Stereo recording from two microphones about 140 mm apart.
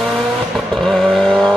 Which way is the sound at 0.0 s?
Centre (ahead or behind).